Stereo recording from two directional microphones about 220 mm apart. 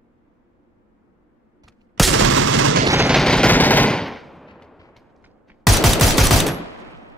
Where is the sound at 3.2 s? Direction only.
5° left (ahead or behind).